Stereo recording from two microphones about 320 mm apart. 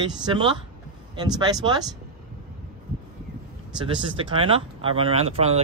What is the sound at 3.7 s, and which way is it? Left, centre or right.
Speech, centre.